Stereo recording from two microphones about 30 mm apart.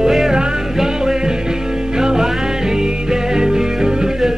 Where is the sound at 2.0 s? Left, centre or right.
Right.